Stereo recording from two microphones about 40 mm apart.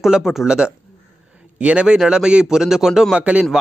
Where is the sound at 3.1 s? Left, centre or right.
Right.